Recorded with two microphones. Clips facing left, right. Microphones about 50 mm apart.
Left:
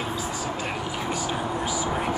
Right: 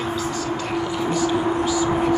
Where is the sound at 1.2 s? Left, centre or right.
Centre.